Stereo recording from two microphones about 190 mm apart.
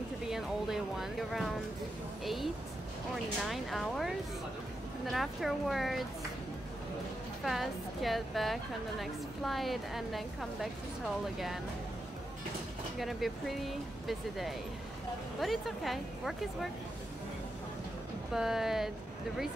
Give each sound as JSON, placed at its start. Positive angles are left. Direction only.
{"t": 0.3, "sound": "a woman's voice", "side_deg": 0}
{"t": 5.1, "sound": "a woman's voice", "side_deg": 0}
{"t": 7.4, "sound": "a woman's voice", "side_deg": 0}
{"t": 13.0, "sound": "a woman's voice", "side_deg": 0}
{"t": 18.3, "sound": "a woman's voice", "side_deg": 0}